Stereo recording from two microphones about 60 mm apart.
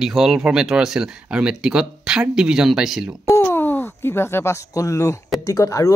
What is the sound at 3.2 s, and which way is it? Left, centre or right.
Speech, left.